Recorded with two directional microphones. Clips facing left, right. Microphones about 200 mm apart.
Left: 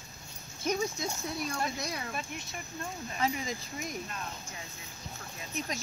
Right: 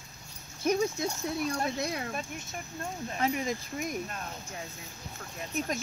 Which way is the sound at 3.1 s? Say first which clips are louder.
Right 3 dB; 50° right (ahead or behind).